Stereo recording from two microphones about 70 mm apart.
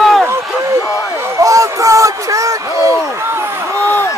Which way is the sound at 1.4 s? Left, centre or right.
Right.